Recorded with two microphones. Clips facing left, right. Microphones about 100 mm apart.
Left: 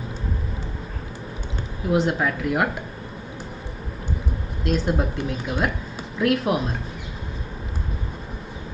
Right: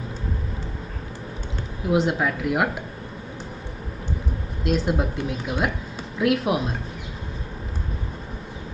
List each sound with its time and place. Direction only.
1.9 s speech: centre (ahead or behind)
4.6 s speech: centre (ahead or behind)